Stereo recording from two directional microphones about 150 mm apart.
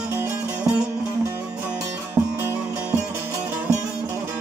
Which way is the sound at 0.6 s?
5° right (ahead or behind).